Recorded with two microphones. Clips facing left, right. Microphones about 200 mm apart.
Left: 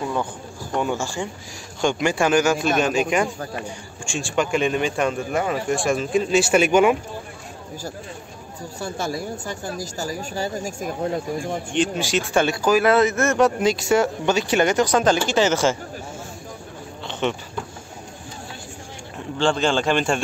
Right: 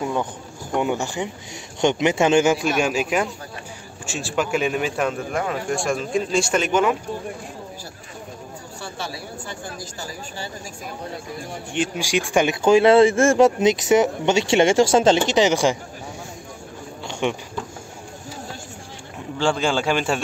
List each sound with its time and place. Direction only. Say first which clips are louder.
0.0 s speech: right 1 dB; 20° right (ahead or behind)
2.8 s a man's voice: left 1 dB; 5° right (ahead or behind); by 7.0 s 10° left (ahead or behind)
8.7 s speech: left 6 dB; 45° left (ahead or behind)
11.7 s speech: even; 10° right (ahead or behind)
12.6 s speech: right 5 dB; 25° right (ahead or behind)
17.1 s a sound: even; 10° right (ahead or behind)
19.3 s speech: left 1 dB; 10° right (ahead or behind)